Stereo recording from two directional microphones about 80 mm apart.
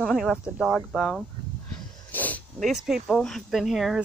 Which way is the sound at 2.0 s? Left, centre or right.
Left.